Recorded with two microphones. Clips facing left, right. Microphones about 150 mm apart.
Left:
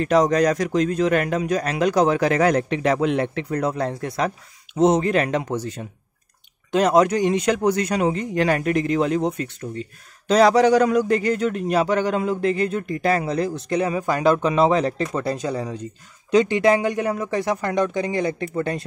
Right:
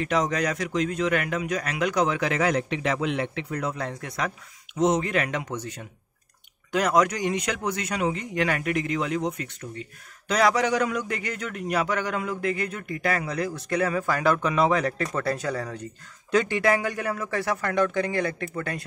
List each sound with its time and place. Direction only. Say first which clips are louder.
0.0 s a man's voice: left 8 dB; 40° left (ahead or behind)